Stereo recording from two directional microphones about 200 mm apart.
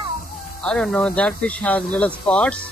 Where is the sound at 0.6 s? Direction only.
5° left (ahead or behind).